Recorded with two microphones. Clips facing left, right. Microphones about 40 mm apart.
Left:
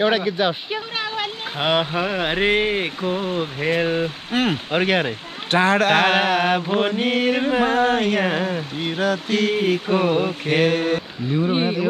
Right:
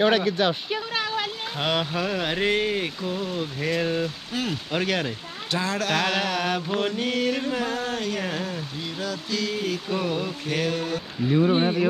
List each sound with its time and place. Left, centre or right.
0.0 s speech: centre; by 4.1 s left
4.3 s mantra: left
5.5 s mantra: left
8.8 s mantra: left
11.2 s speech: centre
11.5 s speech: centre